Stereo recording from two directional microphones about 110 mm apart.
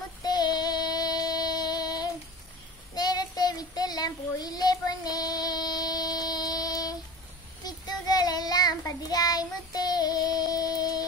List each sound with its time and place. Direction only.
0.2 s child singing: 40° left (ahead or behind)